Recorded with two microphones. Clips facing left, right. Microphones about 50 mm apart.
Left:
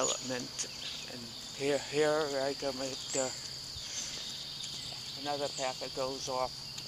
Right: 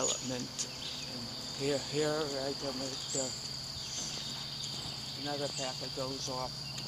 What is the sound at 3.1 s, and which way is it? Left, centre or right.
Speech, left.